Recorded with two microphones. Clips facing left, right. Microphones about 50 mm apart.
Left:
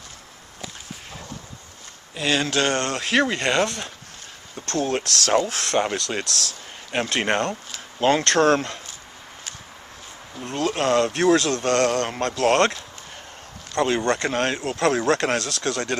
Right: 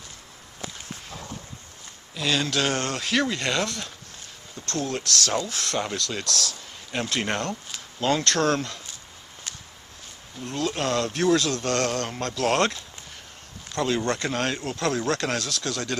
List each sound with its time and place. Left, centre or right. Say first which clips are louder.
2.1 s speech: left 3 dB; left
2.5 s speech: left 3 dB; centre
3.1 s speech: left 4 dB; left
10.4 s speech: left 4 dB; left
13.7 s speech: left 4 dB; left
14.3 s speech: left 3 dB; left
14.8 s speech: left 6 dB; left